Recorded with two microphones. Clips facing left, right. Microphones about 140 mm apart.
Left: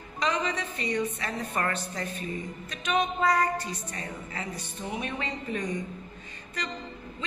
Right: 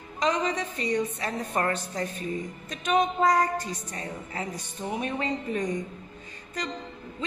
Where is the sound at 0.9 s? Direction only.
15° right (ahead or behind).